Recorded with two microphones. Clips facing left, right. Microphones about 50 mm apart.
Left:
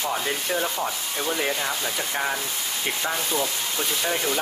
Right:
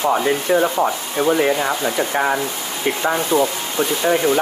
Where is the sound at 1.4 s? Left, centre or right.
Right.